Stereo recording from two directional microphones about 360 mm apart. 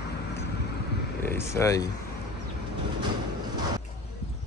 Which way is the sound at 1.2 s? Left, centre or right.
Centre.